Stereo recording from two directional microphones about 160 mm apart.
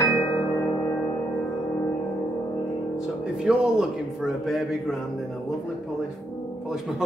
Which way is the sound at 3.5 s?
5° right (ahead or behind).